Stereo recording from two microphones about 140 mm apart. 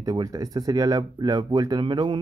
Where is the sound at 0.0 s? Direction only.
25° right (ahead or behind).